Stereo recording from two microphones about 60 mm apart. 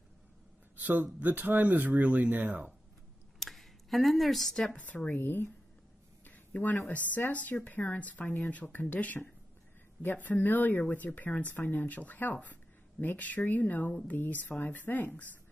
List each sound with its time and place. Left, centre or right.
0.7 s speech: right
3.3 s a sound: centre
4.7 s speech: left